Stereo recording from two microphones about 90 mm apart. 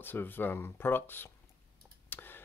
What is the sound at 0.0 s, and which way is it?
Speech, 25° left (ahead or behind).